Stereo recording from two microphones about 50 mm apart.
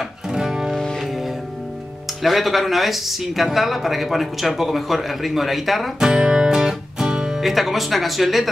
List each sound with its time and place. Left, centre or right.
0.3 s music: centre
0.7 s music: centre
2.2 s speech: centre
6.0 s music: centre
7.3 s speech: centre